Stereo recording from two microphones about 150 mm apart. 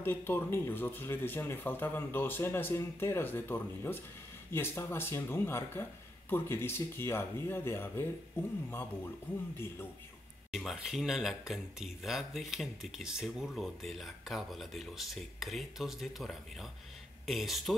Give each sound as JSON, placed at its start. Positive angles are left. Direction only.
{"t": 0.0, "sound": "speech", "side_deg": 15}
{"t": 10.5, "sound": "speech", "side_deg": 0}